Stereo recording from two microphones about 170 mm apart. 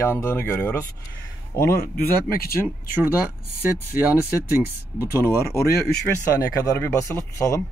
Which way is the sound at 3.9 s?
10° right (ahead or behind).